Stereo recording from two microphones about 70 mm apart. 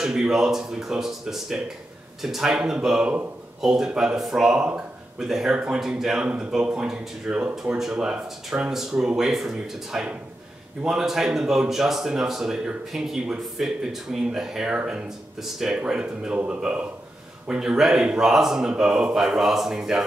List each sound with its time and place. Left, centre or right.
0.0 s speech: centre